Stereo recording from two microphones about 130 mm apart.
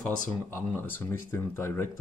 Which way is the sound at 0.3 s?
15° left (ahead or behind).